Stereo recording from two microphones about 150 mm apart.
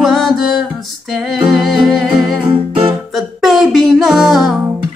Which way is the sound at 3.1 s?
Centre (ahead or behind).